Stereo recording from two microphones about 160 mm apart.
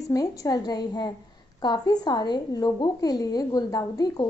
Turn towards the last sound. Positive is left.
turn(degrees=25)  # may be behind; listen again after turning